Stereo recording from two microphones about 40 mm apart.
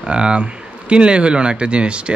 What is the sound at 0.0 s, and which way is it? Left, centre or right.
Speech, right.